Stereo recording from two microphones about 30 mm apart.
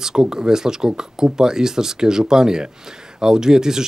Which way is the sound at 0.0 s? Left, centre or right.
Right.